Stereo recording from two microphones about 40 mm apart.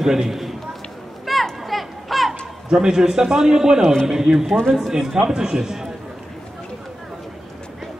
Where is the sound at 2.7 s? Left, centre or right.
Centre.